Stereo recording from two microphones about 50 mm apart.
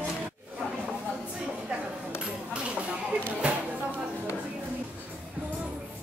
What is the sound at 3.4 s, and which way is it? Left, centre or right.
Music, right.